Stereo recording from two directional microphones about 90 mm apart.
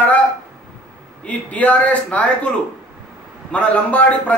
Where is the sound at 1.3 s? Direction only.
15° left (ahead or behind).